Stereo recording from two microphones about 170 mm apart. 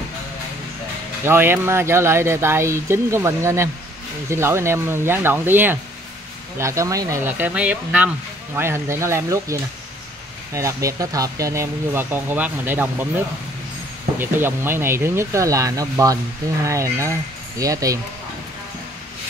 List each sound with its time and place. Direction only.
1.2 s speech: 15° right (ahead or behind)
14.2 s speech: 15° right (ahead or behind)